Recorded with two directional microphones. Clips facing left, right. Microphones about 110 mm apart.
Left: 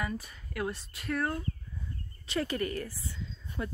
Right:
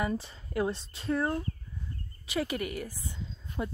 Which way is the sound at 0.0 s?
30° right (ahead or behind).